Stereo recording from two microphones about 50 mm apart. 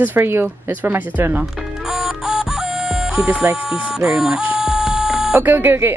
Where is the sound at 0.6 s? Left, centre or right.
Right.